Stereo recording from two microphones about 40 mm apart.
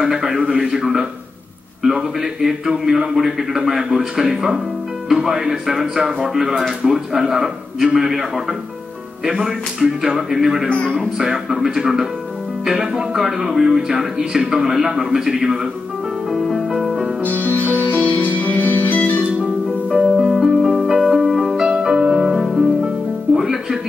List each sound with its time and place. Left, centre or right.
0.0 s a man's voice: centre
9.2 s speech: centre
9.8 s a man's voice: centre
16.3 s music: centre
17.2 s music: left
19.9 s music: right
20.2 s music: centre
21.6 s music: centre